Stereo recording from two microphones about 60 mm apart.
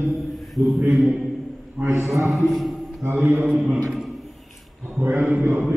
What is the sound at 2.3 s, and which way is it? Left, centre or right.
Music, centre.